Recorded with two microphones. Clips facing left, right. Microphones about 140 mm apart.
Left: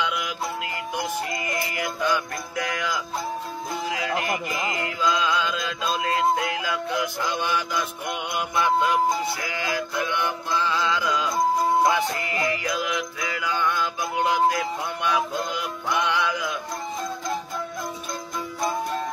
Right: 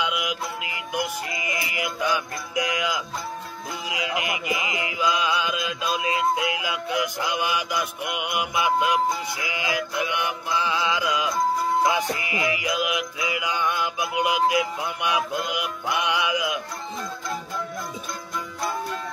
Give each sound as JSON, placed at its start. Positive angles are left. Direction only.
{"t": 0.0, "sound": "music", "side_deg": -10}
{"t": 1.8, "sound": "mantra", "side_deg": -15}
{"t": 3.9, "sound": "mantra", "side_deg": -10}